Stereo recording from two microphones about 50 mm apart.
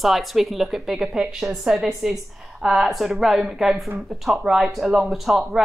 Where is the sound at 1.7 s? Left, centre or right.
Centre.